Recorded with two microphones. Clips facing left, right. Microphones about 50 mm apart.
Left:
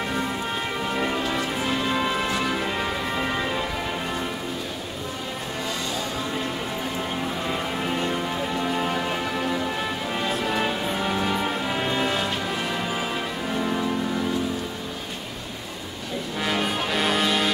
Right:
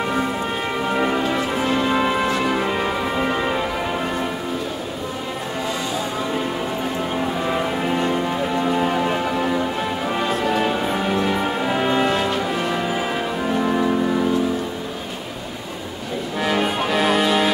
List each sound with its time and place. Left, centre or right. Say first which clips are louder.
0.8 s music: right 6 dB; centre
7.2 s music: right 6 dB; centre
13.5 s music: right 6 dB; centre
16.3 s music: right 5 dB; centre